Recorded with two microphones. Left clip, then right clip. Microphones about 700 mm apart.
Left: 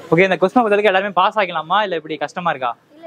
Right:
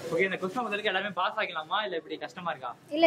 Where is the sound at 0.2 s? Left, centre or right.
Left.